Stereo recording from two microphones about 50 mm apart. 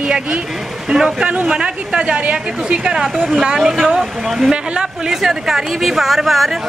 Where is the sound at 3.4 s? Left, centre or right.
Centre.